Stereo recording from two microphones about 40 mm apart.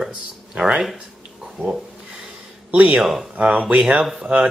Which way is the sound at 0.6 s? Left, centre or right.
Right.